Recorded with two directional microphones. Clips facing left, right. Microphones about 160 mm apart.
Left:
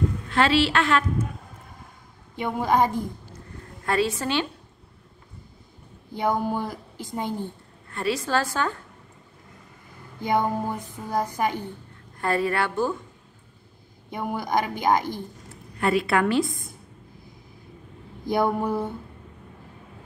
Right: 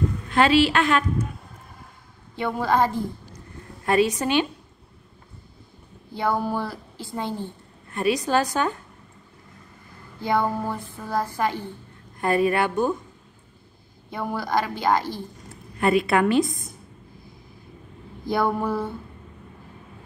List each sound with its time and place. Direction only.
0.3 s a woman's voice: 15° right (ahead or behind)
2.3 s a woman's voice: 15° left (ahead or behind)
3.3 s a sound: 20° right (ahead or behind)
6.1 s a woman's voice: 15° left (ahead or behind)
7.9 s a woman's voice: 15° right (ahead or behind)
10.2 s a woman's voice: 15° left (ahead or behind)
12.2 s a woman's voice: 20° right (ahead or behind)
14.1 s a woman's voice: 15° left (ahead or behind)
15.8 s a woman's voice: 20° right (ahead or behind)
18.2 s a woman's voice: 15° left (ahead or behind)